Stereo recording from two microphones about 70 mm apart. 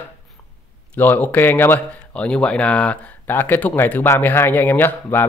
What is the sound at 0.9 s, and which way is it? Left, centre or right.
Speech, left.